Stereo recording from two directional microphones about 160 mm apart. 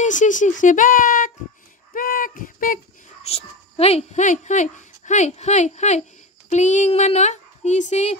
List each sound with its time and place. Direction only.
0.0 s speech: 50° left (ahead or behind)
2.0 s a sound: 60° left (ahead or behind)
3.3 s speech: 40° left (ahead or behind)